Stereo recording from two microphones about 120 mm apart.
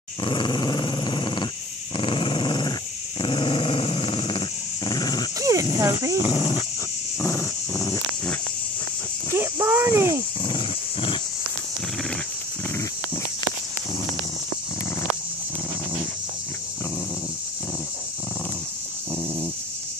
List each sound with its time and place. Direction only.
0.2 s dog: 40° left (ahead or behind)
5.4 s a sound: 30° right (ahead or behind)
5.8 s speech: 25° right (ahead or behind)
6.1 s speech: 50° left (ahead or behind)
7.2 s dog: 25° left (ahead or behind)
9.3 s a sound: 20° right (ahead or behind)
10.4 s dog: 45° left (ahead or behind)